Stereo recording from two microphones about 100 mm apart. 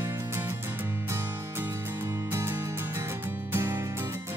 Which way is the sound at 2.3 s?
25° right (ahead or behind).